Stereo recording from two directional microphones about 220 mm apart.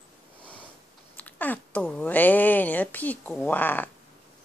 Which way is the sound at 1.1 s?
10° left (ahead or behind).